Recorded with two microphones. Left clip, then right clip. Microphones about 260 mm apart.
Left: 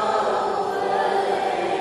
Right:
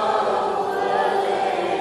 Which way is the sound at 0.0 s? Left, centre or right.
Centre.